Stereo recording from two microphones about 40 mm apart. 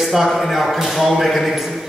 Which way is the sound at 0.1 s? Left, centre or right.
Centre.